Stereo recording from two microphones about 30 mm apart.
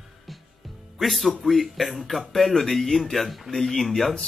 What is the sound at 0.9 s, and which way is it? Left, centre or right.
Speech, centre.